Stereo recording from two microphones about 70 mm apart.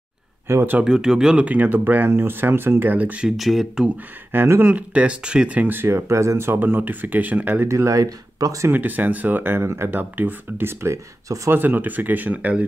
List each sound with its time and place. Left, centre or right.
0.5 s speech: right
0.8 s speech: centre
3.3 s speech: centre
4.3 s speech: right
7.6 s speech: right
8.7 s speech: right
11.6 s speech: right